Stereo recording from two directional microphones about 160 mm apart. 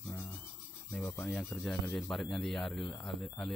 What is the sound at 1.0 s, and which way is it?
Speech, 10° left (ahead or behind).